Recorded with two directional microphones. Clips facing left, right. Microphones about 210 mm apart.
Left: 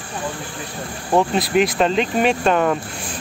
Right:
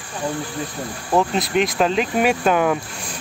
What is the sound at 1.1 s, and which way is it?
Speech, centre (ahead or behind).